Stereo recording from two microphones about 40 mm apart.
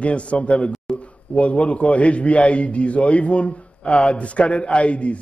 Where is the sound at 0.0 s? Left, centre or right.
Left.